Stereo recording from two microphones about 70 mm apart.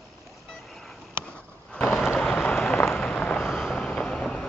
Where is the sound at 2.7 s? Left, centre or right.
Left.